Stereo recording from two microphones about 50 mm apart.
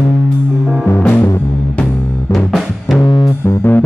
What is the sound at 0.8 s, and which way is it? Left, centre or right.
Music, left.